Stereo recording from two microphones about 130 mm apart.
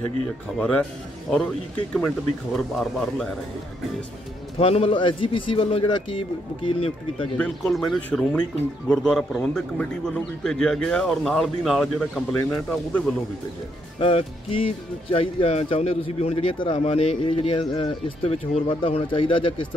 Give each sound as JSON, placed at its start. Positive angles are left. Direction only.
{"t": 0.6, "sound": "speech", "side_deg": 5}
{"t": 2.5, "sound": "a man's voice", "side_deg": 0}
{"t": 4.6, "sound": "speech", "side_deg": 50}
{"t": 7.3, "sound": "a man's voice", "side_deg": 5}
{"t": 13.9, "sound": "speech", "side_deg": 45}
{"t": 16.7, "sound": "speech", "side_deg": 50}